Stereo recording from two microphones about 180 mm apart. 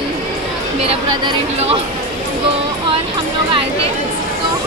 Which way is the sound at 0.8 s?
25° right (ahead or behind).